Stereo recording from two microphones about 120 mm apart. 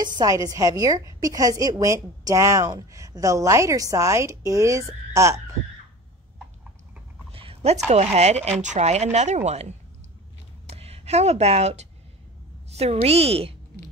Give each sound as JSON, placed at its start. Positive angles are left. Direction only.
{"t": 0.0, "sound": "a woman's voice", "side_deg": -35}
{"t": 7.3, "sound": "a sound", "side_deg": -55}
{"t": 7.9, "sound": "a woman's voice", "side_deg": -65}